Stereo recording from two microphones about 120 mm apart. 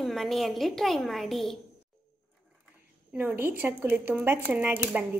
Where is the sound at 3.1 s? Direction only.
10° right (ahead or behind).